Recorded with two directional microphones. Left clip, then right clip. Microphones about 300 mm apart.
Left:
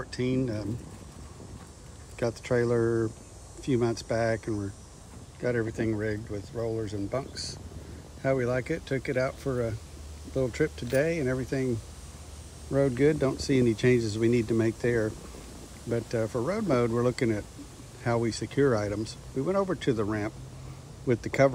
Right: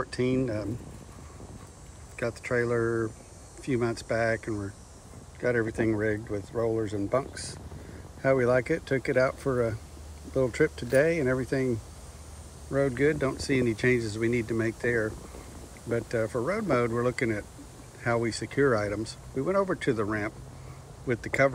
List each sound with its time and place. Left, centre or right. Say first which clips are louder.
0.0 s speech: right 2 dB; centre
2.1 s speech: left 1 dB; centre
4.1 s speech: right 3 dB; centre
12.7 s speech: left 1 dB; centre
13.5 s speech: left 2 dB; left
14.0 s speech: left 2 dB; centre